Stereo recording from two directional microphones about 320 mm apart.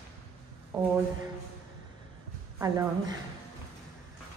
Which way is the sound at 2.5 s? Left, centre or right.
Centre.